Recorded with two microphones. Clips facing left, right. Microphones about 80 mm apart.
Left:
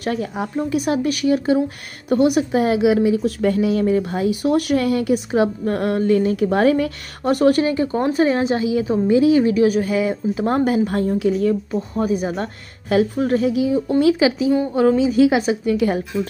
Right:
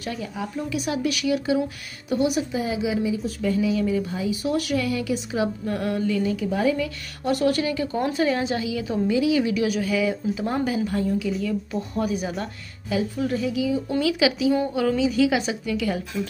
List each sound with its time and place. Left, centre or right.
0.0 s speech: left
6.5 s a woman's voice: left